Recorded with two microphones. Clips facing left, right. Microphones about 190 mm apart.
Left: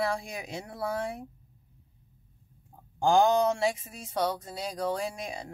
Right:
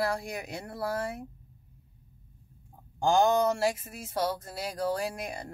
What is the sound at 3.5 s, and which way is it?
Speech, 5° right (ahead or behind).